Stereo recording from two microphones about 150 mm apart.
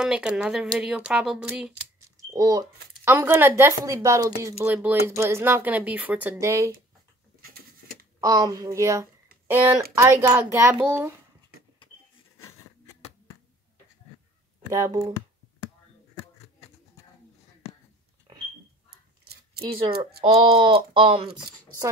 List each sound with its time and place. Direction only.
0.0 s a woman's voice: 5° right (ahead or behind)
2.3 s speech: 25° right (ahead or behind)
7.4 s patter: 90° right
8.2 s speech: 25° right (ahead or behind)
12.4 s a sound: 15° left (ahead or behind)
14.7 s speech: 20° right (ahead or behind)
20.5 s speech: 35° right (ahead or behind)